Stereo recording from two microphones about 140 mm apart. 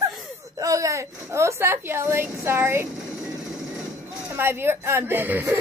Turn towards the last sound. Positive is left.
turn(degrees=-15)  # may be behind; listen again after turning